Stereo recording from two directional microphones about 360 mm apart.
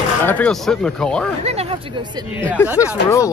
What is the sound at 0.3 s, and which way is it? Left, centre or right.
Speech, centre.